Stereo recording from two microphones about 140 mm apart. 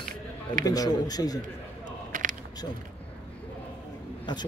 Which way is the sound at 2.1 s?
65° right (ahead or behind).